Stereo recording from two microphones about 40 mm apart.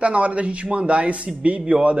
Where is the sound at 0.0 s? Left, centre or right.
Right.